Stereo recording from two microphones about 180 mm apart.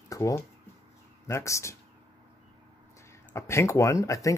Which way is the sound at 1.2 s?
15° left (ahead or behind).